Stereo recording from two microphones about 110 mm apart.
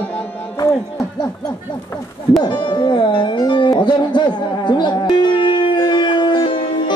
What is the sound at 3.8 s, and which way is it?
Music, 45° left (ahead or behind).